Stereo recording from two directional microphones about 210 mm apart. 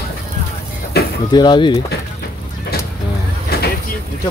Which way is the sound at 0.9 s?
50° left (ahead or behind).